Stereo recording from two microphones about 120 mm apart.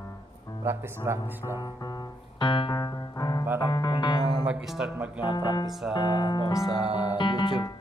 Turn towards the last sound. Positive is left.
turn(degrees=40)  # may be behind; listen again after turning